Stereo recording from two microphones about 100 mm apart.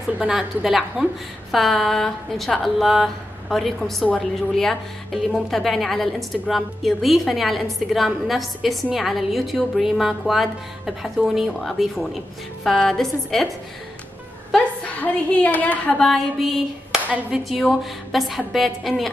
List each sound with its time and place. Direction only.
0.2 s a woman's voice: 10° right (ahead or behind)
14.9 s a woman's voice: 15° left (ahead or behind)
16.0 s clapping: centre (ahead or behind)
17.1 s a woman's voice: 5° right (ahead or behind)